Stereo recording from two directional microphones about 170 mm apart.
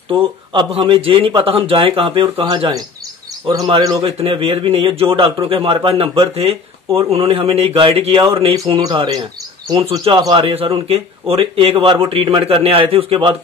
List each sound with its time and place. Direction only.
0.1 s a man's voice: 30° right (ahead or behind)
8.5 s speech: 25° right (ahead or behind)
10.2 s a man's voice: 30° right (ahead or behind)